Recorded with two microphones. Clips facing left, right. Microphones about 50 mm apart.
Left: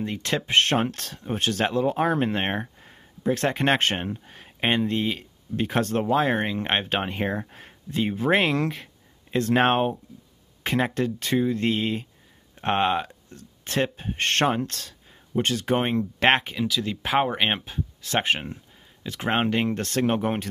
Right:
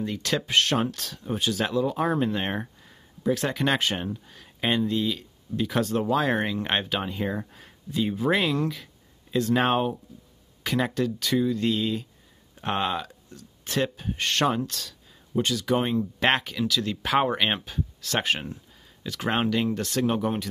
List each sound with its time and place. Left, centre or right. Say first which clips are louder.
0.0 s speech: even; left
6.0 s speech: left 2 dB; left
6.9 s speech: left 2 dB; left
8.6 s speech: left 1 dB; left
16.5 s speech: even; centre; by 20.4 s left